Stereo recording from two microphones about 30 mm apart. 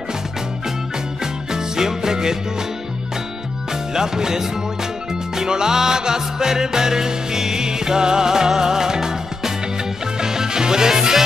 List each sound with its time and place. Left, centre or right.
1.2 s music: centre
3.9 s music: centre